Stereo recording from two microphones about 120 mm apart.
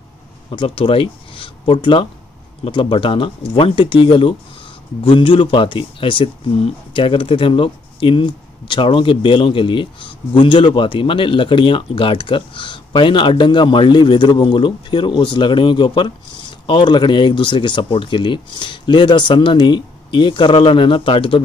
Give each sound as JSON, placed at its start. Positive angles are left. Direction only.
{"t": 0.5, "sound": "speech", "side_deg": 50}